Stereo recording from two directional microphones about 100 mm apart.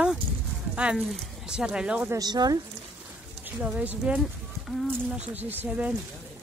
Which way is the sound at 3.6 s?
15° right (ahead or behind).